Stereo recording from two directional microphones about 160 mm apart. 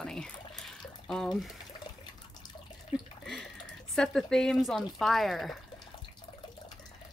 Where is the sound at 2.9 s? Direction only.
5° left (ahead or behind).